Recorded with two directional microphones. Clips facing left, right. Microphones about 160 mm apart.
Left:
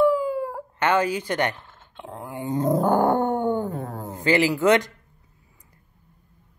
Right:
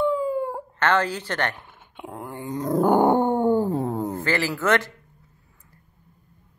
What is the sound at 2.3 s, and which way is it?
Dog, 25° left (ahead or behind).